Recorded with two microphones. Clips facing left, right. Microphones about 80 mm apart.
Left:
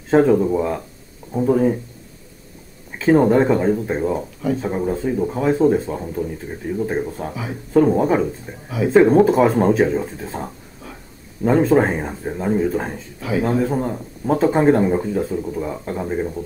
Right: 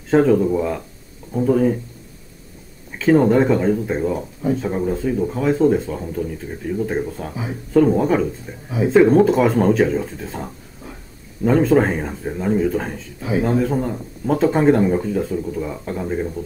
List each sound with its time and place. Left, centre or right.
0.1 s speech: centre
3.0 s speech: centre
11.4 s speech: centre